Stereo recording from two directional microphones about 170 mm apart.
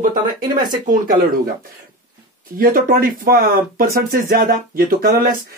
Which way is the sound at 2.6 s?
60° right (ahead or behind).